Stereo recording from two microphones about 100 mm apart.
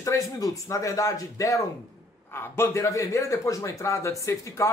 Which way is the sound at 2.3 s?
25° left (ahead or behind).